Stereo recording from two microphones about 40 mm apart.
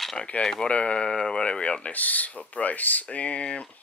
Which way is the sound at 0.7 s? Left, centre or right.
Left.